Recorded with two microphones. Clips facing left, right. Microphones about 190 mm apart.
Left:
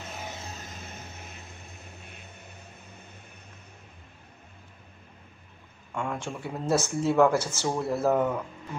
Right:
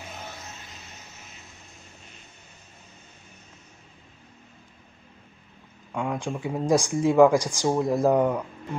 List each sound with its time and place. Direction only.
5.9 s speech: 15° right (ahead or behind)